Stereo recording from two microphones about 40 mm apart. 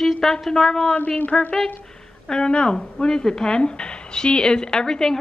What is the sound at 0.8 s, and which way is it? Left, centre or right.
A woman's voice, left.